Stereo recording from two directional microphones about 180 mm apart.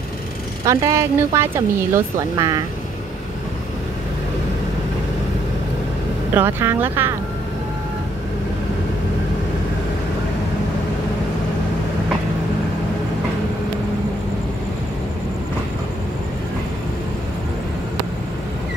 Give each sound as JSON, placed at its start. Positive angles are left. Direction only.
{"t": 0.7, "sound": "speech", "side_deg": -20}
{"t": 6.3, "sound": "speech", "side_deg": -15}